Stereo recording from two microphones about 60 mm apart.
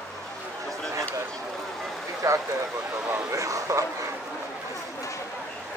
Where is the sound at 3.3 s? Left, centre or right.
Right.